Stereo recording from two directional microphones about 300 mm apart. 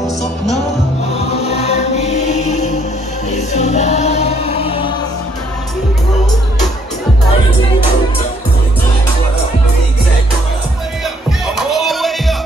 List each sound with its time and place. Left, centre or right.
1.4 s music: left
11.4 s music: centre